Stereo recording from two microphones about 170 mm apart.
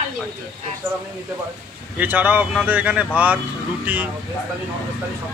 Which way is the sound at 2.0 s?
10° right (ahead or behind).